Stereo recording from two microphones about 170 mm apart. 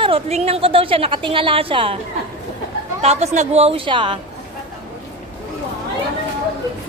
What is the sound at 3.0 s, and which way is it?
A woman's voice, 40° right (ahead or behind).